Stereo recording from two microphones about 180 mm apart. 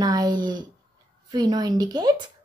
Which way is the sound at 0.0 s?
25° right (ahead or behind).